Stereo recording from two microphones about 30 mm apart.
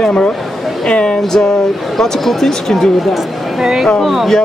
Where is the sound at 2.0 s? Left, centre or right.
Centre.